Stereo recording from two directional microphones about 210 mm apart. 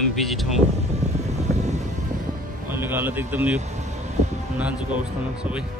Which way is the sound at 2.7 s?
10° right (ahead or behind).